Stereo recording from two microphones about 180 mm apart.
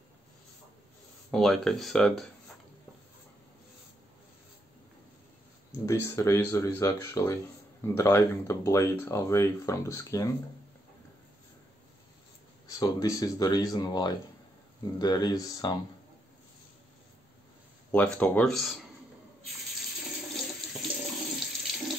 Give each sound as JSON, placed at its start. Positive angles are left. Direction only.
{"t": 1.3, "sound": "speech", "side_deg": 0}
{"t": 5.7, "sound": "speech", "side_deg": 15}
{"t": 12.7, "sound": "speech", "side_deg": 20}
{"t": 17.9, "sound": "speech", "side_deg": 5}
{"t": 21.2, "sound": "water", "side_deg": 0}